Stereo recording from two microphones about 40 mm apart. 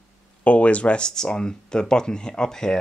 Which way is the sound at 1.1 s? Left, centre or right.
Centre.